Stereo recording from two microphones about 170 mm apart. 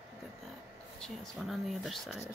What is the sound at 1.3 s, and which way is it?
Speech, centre (ahead or behind).